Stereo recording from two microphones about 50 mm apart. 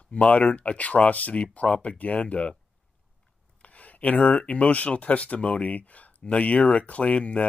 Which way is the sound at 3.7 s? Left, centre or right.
Left.